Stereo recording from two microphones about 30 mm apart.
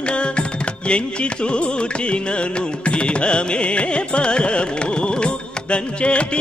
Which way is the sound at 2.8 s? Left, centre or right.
Left.